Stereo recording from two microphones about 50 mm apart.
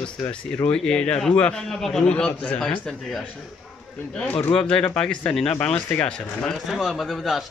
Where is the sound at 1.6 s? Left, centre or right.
Centre.